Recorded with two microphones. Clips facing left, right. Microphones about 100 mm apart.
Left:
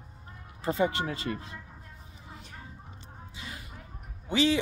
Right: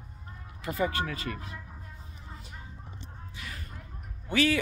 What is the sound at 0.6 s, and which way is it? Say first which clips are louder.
Speech: left 2 dB; 25° left (ahead or behind).